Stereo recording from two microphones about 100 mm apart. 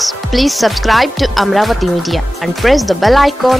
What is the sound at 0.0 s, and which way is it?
Speech, centre (ahead or behind).